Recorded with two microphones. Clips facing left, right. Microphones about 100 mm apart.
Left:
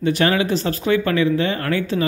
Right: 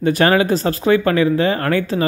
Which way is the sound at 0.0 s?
45° right (ahead or behind).